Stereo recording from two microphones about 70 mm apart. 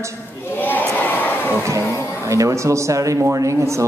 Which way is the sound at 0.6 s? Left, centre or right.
Left.